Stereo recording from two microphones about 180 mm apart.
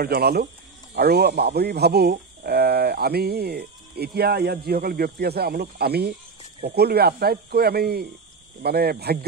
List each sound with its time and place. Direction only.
0.0 s speech: 60° right (ahead or behind)